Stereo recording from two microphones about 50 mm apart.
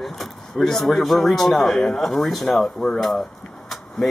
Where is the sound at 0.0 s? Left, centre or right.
Centre.